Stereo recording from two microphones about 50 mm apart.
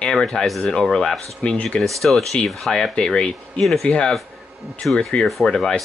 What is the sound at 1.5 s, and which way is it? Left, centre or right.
Speech, left.